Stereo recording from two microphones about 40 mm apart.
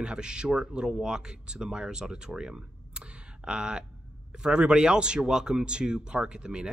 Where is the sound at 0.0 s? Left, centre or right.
Right.